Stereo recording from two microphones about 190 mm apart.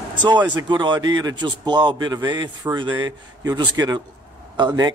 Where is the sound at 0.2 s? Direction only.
20° right (ahead or behind).